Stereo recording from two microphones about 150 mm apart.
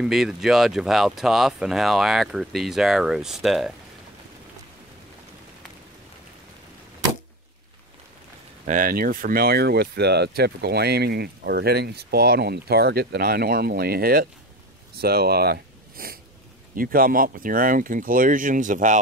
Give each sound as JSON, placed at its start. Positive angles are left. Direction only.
{"t": 0.0, "sound": "speech", "side_deg": -5}
{"t": 8.6, "sound": "speech", "side_deg": -70}
{"t": 15.0, "sound": "speech", "side_deg": -90}
{"t": 16.7, "sound": "speech", "side_deg": -70}